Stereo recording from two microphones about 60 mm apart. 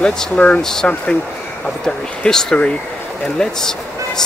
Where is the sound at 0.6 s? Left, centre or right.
Centre.